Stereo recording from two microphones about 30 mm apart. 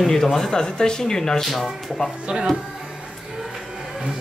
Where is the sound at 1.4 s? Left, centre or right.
Centre.